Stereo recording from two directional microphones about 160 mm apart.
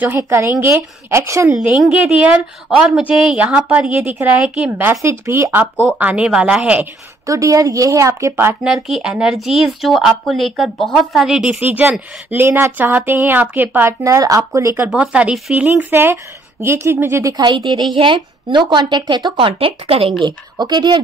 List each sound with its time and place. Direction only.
0.2 s a woman's voice: 15° right (ahead or behind)
1.7 s a woman's voice: 5° right (ahead or behind)
7.2 s a woman's voice: 20° right (ahead or behind)
8.6 s speech: centre (ahead or behind); by 14.9 s 20° right (ahead or behind)
14.9 s a woman's voice: 5° right (ahead or behind); by 21.0 s 30° right (ahead or behind)